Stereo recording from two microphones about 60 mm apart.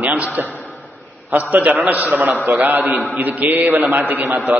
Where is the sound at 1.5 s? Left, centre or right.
Right.